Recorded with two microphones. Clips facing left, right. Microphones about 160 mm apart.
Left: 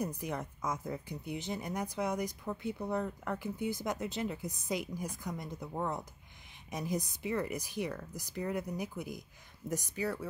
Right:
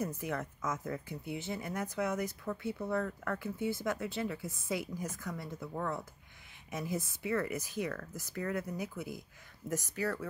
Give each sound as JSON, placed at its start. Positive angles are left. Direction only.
{"t": 0.0, "sound": "speech", "side_deg": 15}